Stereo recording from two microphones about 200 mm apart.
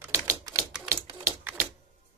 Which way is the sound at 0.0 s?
15° right (ahead or behind).